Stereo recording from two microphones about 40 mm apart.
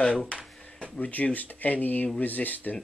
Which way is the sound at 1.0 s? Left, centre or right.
Left.